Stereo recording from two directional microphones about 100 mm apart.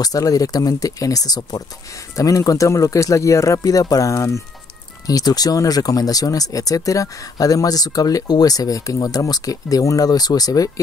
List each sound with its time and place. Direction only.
0.0 s speech: 35° left (ahead or behind)